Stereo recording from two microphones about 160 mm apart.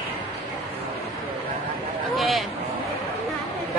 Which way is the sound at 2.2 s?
Centre (ahead or behind).